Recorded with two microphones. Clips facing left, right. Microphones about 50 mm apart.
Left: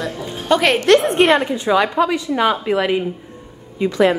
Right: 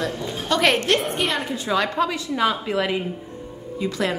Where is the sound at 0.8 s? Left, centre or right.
Left.